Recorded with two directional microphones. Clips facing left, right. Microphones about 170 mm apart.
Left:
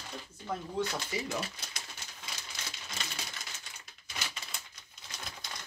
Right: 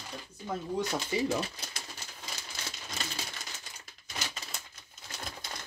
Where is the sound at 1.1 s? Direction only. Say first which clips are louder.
Right 10 dB; 25° right (ahead or behind).